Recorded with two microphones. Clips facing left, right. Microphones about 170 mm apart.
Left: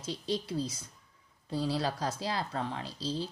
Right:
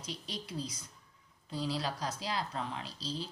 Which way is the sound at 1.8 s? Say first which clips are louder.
Left 4 dB; 50° left (ahead or behind).